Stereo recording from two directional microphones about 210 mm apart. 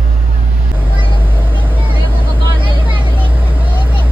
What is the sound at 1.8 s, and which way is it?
Vehicle, 25° right (ahead or behind).